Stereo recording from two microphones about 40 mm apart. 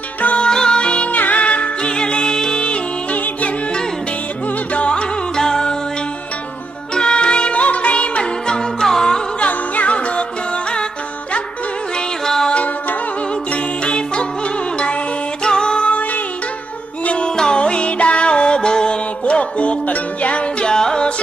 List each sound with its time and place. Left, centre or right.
0.4 s music: centre
1.8 s music: left
2.6 s music: left
4.7 s music: left
5.3 s music: centre
7.0 s music: left
9.4 s music: left
13.8 s music: left
15.4 s music: centre
17.0 s music: left
20.6 s music: centre